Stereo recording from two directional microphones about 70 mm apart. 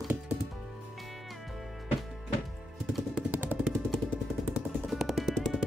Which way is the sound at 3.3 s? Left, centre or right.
Right.